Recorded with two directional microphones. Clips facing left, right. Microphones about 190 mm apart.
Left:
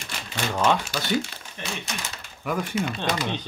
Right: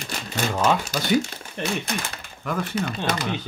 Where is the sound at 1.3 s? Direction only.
55° right (ahead or behind).